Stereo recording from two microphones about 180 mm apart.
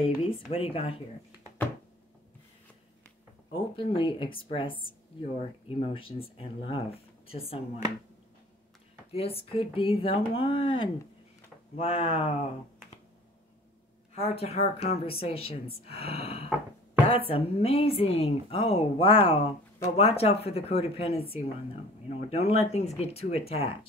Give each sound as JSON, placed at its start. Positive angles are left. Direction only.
{"t": 0.0, "sound": "speech", "side_deg": 30}
{"t": 3.5, "sound": "speech", "side_deg": 30}
{"t": 9.1, "sound": "speech", "side_deg": 35}
{"t": 14.1, "sound": "speech", "side_deg": 35}